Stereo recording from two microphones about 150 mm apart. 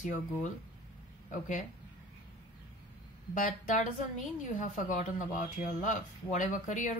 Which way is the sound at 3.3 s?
60° left (ahead or behind).